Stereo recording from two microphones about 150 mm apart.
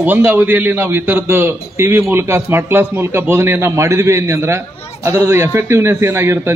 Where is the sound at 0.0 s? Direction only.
10° right (ahead or behind).